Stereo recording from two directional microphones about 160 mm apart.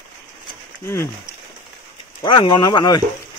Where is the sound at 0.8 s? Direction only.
15° left (ahead or behind).